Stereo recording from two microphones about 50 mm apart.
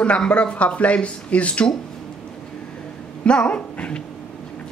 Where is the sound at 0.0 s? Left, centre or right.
Left.